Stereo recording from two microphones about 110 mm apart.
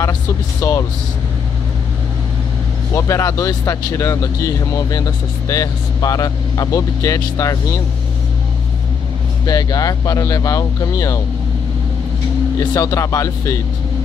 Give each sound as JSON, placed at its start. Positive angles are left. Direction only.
{"t": 0.6, "sound": "speech", "side_deg": 25}
{"t": 2.9, "sound": "speech", "side_deg": 30}
{"t": 9.5, "sound": "speech", "side_deg": 35}
{"t": 12.5, "sound": "speech", "side_deg": 30}